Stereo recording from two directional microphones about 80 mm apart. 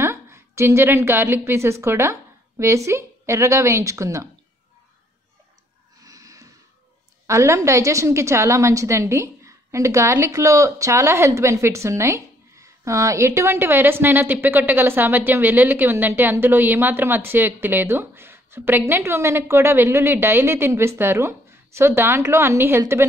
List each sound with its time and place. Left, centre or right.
0.0 s a woman's voice: right
5.9 s snort: right
7.2 s a woman's voice: right